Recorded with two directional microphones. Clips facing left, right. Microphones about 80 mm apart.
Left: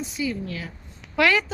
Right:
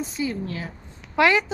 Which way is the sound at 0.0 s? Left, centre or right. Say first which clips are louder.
Right 1 dB; right.